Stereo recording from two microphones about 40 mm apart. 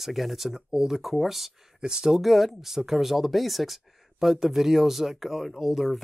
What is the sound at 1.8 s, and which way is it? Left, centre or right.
Speech, centre.